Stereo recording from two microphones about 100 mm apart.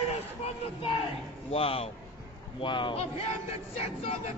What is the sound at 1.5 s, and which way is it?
Speech, 75° left (ahead or behind).